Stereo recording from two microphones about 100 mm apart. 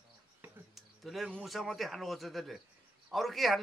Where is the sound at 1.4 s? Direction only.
Centre (ahead or behind).